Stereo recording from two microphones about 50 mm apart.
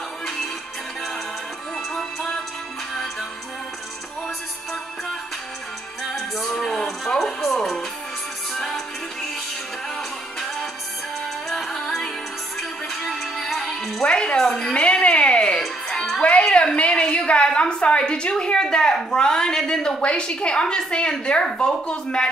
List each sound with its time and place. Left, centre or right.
2.0 s music: centre
6.1 s music: centre
11.4 s music: centre
13.0 s music: centre
14.0 s music: centre
16.2 s a sound: left
19.0 s a woman's voice: centre